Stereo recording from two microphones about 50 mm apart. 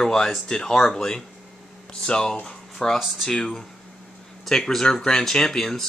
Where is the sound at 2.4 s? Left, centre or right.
Centre.